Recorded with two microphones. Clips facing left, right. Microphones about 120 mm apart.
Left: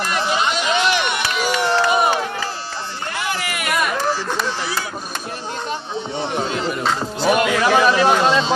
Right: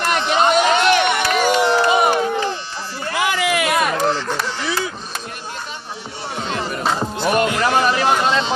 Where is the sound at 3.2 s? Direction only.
90° right.